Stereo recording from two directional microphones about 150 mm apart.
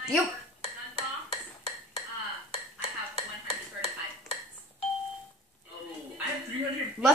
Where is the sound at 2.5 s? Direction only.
45° left (ahead or behind).